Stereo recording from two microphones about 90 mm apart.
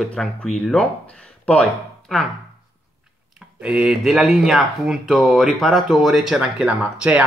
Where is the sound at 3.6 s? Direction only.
15° right (ahead or behind).